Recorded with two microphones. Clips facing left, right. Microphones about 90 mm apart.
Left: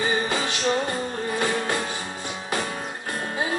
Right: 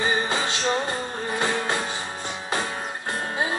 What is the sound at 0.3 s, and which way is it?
Music, 25° right (ahead or behind).